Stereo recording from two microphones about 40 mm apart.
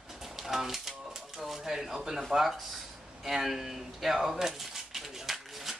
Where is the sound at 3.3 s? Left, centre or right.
Centre.